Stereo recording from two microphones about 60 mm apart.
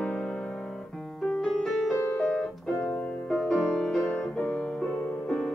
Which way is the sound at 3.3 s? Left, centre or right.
Centre.